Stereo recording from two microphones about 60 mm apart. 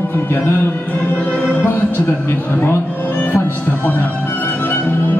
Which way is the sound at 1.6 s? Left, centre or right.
Left.